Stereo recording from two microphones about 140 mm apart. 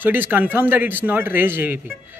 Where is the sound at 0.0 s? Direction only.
15° right (ahead or behind).